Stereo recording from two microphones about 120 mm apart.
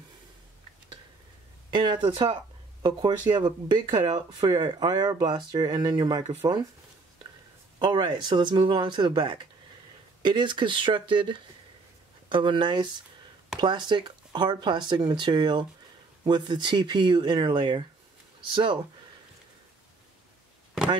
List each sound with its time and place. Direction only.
1.7 s speech: 40° right (ahead or behind)
7.8 s speech: 40° right (ahead or behind)